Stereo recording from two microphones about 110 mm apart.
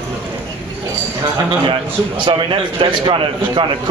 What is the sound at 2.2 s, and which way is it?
A man's voice, 50° right (ahead or behind).